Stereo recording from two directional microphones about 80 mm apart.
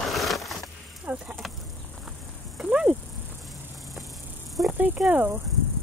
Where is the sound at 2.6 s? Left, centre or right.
Centre.